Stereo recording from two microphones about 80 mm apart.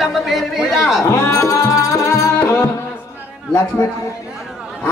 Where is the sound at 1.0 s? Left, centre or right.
Left.